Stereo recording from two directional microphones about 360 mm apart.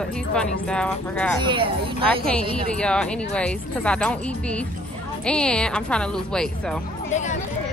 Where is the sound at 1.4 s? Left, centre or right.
Centre.